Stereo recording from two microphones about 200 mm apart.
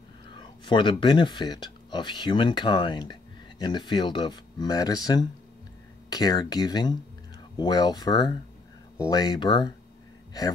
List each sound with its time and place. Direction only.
0.3 s speech: 25° left (ahead or behind)